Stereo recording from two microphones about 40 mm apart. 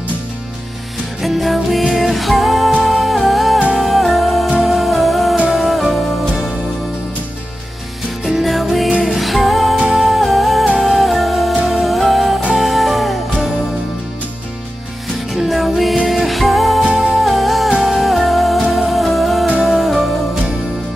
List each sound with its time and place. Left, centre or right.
1.2 s music: centre
3.5 s music: right
3.8 s music: centre
8.4 s music: centre
15.3 s music: centre
16.9 s music: right
17.2 s music: centre